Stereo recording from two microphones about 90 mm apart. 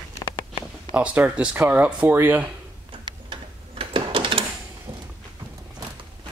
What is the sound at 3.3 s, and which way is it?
Tick-tock, 70° right (ahead or behind).